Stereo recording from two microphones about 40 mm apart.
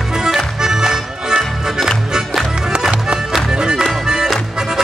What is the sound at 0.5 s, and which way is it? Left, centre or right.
Music, centre.